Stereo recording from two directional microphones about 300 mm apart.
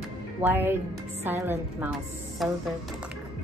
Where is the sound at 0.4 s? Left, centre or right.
Centre.